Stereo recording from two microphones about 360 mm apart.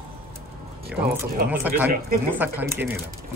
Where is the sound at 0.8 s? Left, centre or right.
Centre.